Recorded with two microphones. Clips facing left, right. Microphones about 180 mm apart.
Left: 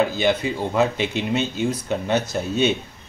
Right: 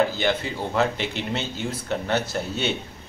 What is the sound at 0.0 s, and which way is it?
Speech, 15° left (ahead or behind).